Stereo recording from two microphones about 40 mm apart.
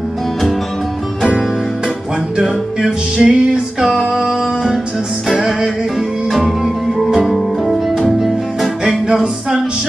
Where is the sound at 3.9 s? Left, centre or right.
Centre.